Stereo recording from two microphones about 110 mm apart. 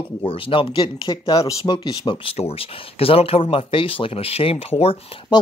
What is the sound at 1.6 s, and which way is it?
Speech, 45° left (ahead or behind).